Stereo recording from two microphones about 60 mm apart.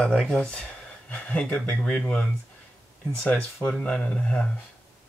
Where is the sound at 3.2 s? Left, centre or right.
Left.